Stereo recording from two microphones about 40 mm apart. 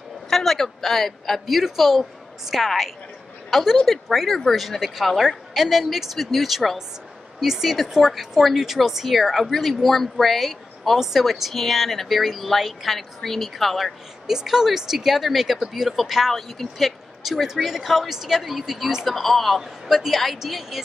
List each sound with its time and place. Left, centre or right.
0.3 s a woman's voice: centre
14.2 s speech: centre